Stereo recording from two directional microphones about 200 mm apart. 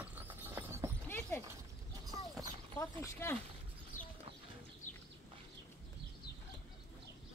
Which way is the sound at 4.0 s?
40° left (ahead or behind).